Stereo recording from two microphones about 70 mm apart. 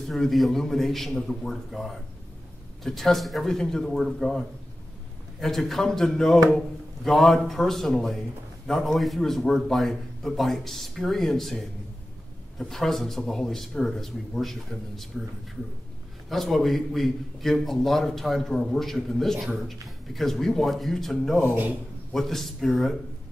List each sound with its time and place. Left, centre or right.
0.1 s a man's voice: centre
16.3 s a man's voice: centre
21.5 s a man's voice: right
22.1 s a man's voice: centre